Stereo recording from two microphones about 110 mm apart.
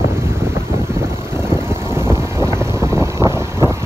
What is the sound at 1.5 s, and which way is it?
Vehicle, 20° right (ahead or behind).